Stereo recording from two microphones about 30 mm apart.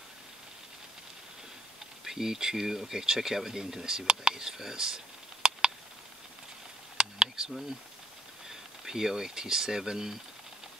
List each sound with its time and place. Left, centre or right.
2.0 s speech: centre
4.6 s computer keyboard: centre
7.0 s a sound: right
8.5 s speech: centre